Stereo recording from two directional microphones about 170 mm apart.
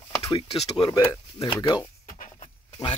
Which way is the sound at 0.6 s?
30° left (ahead or behind).